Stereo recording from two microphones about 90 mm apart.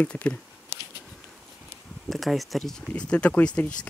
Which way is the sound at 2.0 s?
Centre (ahead or behind).